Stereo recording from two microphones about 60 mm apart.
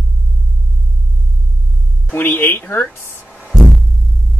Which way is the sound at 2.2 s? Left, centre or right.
Left.